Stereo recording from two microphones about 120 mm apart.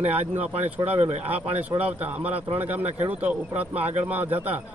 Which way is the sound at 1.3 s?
60° right (ahead or behind).